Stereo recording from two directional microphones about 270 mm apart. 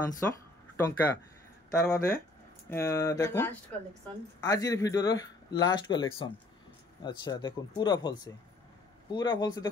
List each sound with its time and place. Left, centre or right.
0.2 s speech: centre